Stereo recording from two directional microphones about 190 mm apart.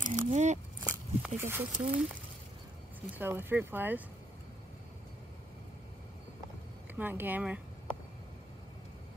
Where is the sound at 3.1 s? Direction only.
10° right (ahead or behind).